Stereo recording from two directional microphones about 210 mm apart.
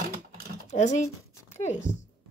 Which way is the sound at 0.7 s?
35° left (ahead or behind).